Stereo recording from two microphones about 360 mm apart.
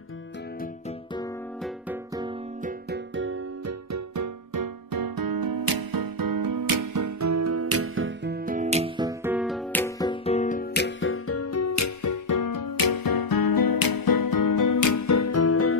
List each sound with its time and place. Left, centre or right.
2.6 s music: right
3.9 s music: right; by 15.7 s left